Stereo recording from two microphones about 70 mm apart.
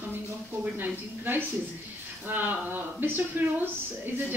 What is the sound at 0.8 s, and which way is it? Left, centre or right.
Speech, right.